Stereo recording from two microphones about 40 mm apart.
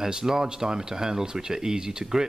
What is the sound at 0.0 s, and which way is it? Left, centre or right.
Speech, centre.